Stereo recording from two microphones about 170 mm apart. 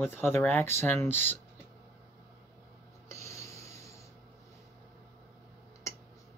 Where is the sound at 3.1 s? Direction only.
15° left (ahead or behind).